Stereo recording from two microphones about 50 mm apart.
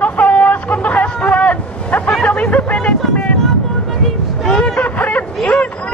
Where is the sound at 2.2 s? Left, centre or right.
Left.